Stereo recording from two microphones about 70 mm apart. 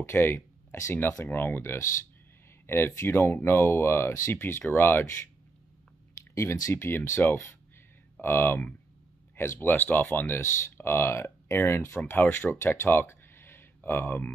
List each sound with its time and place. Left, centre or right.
0.0 s speech: left
6.3 s speech: left
6.7 s speech: left